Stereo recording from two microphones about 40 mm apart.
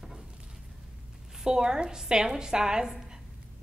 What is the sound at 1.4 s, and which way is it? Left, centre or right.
A woman's voice, centre.